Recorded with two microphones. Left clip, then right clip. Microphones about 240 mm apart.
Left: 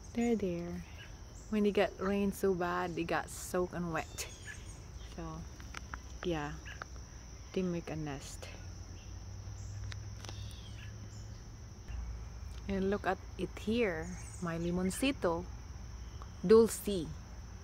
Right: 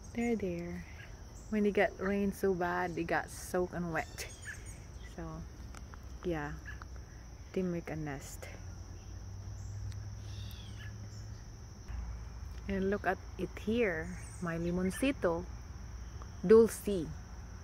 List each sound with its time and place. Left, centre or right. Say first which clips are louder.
0.1 s speech: left 1 dB; centre
5.2 s speech: even; centre
7.6 s speech: even; centre
12.6 s speech: right 1 dB; centre
16.4 s speech: right 1 dB; centre
16.8 s speech: right 1 dB; centre